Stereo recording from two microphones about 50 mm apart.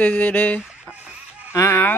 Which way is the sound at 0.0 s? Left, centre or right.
Left.